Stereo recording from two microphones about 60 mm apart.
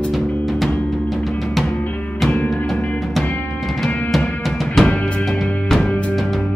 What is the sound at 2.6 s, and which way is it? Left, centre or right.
Music, centre.